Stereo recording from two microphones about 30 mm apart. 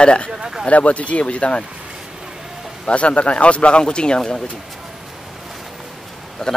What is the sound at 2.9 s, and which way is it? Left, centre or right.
Speech, left.